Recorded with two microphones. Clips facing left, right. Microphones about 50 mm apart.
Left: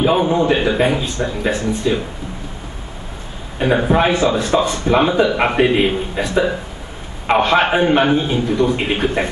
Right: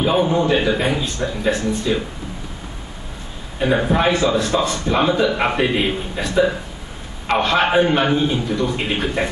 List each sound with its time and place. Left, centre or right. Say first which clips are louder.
0.0 s speech: left 2 dB; centre
3.5 s speech: left 2 dB; centre